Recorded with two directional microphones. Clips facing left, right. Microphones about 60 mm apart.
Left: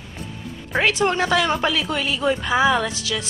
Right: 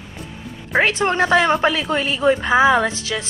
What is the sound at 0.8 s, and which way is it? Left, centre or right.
A woman's voice, right.